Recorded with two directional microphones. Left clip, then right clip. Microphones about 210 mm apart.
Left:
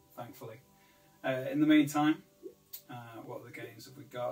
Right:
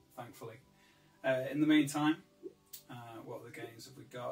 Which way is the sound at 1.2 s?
10° left (ahead or behind).